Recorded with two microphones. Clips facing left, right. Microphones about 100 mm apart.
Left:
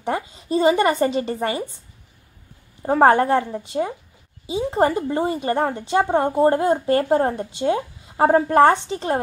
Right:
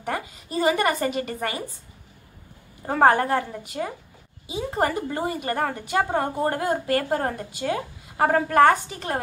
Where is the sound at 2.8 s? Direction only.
25° left (ahead or behind).